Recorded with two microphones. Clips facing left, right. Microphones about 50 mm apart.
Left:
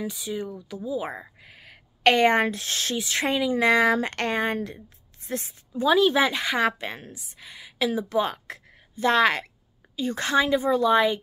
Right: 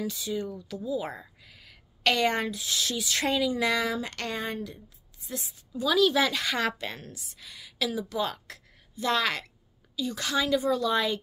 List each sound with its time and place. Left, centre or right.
0.0 s speech: centre; by 2.5 s left
2.5 s a woman's voice: left